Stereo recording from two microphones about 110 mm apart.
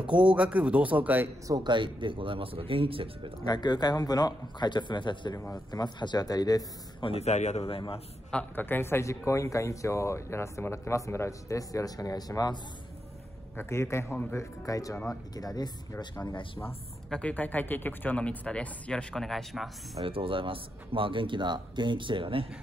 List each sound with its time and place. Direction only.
0.0 s a man's voice: 10° right (ahead or behind)
1.5 s speech: 45° right (ahead or behind)
3.4 s a man's voice: 40° left (ahead or behind)
7.0 s a man's voice: 65° left (ahead or behind)
8.3 s speech: 15° left (ahead or behind); by 12.5 s 35° left (ahead or behind)
13.6 s a man's voice: 25° left (ahead or behind)
17.1 s speech: 10° left (ahead or behind)
20.0 s speech: 55° right (ahead or behind)